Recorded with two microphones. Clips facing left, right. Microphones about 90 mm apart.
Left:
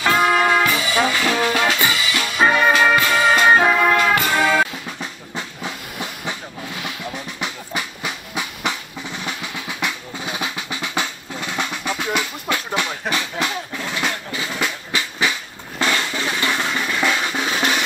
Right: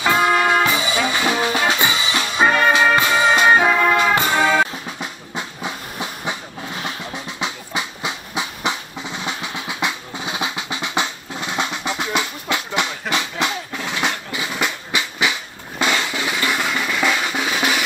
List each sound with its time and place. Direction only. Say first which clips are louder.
0.2 s music: even; centre (ahead or behind)
0.7 s music: left 1 dB; 20° right (ahead or behind)
2.4 s music: even; centre (ahead or behind)
3.0 s music: even; 20° right (ahead or behind)
3.4 s music: even; 5° right (ahead or behind)
3.9 s brass instrument: even; 20° right (ahead or behind)
5.3 s train: right 2 dB; 20° right (ahead or behind)
7.3 s music: right 4 dB; 20° right (ahead or behind)
15.8 s drum: right 1 dB; 15° right (ahead or behind)
16.7 s drum: even; centre (ahead or behind)